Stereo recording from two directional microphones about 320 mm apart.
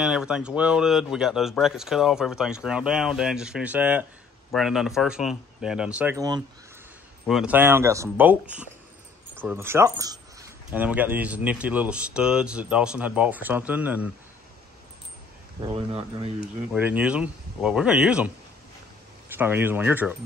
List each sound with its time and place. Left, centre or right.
0.0 s speech: centre
15.6 s speech: centre
16.3 s speech: centre
19.3 s speech: centre